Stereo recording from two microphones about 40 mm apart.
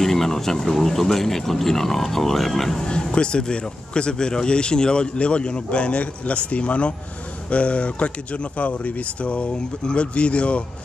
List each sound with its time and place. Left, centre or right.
0.0 s speech: centre
2.8 s speech: centre